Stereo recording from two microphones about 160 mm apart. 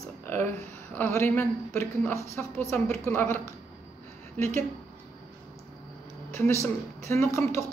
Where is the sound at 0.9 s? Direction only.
15° left (ahead or behind).